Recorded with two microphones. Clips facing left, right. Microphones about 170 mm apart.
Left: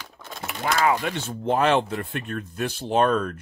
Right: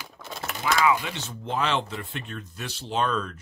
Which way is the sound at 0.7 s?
45° left (ahead or behind).